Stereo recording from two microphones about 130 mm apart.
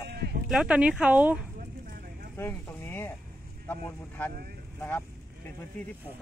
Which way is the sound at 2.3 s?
15° left (ahead or behind).